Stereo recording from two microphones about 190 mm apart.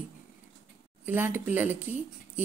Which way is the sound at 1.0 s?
10° right (ahead or behind).